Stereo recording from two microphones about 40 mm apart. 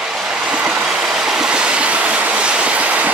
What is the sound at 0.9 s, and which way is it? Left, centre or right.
Train, centre.